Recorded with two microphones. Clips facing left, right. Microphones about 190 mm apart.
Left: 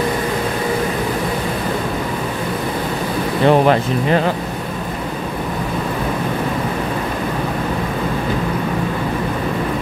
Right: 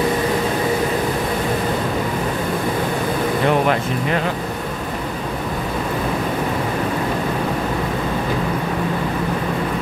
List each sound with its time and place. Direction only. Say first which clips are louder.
3.4 s speech: left 7 dB; 30° left (ahead or behind)